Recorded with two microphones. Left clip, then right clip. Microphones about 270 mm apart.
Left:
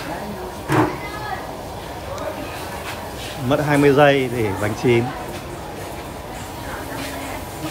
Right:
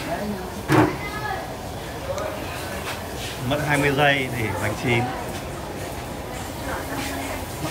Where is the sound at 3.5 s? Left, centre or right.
Centre.